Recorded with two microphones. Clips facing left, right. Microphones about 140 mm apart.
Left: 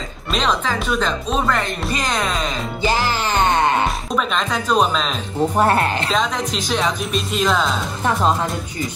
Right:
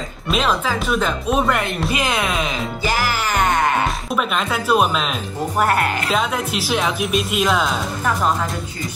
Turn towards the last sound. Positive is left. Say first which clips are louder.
# even
turn(degrees=-5)  # may be behind; listen again after turning